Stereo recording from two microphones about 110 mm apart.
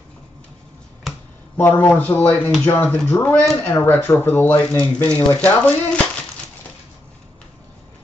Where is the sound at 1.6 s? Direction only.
20° left (ahead or behind).